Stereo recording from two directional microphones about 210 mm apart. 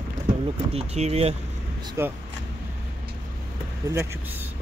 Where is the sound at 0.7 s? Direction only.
30° right (ahead or behind).